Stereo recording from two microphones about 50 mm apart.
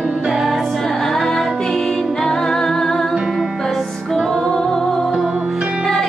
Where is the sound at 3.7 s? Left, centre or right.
Centre.